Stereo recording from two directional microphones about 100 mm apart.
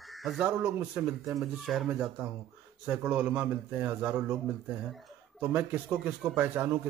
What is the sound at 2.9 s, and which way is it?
A man's voice, 15° right (ahead or behind).